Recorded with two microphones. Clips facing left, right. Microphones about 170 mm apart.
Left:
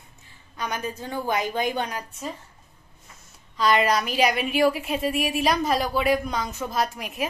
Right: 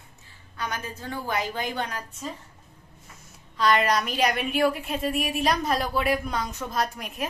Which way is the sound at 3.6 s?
Centre (ahead or behind).